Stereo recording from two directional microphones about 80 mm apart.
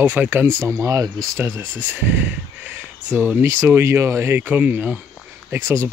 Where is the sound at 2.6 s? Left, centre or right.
Centre.